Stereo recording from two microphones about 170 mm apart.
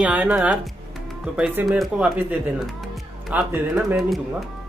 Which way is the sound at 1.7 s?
Centre (ahead or behind).